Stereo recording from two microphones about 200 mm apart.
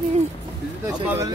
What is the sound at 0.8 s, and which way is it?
Speech, 15° right (ahead or behind).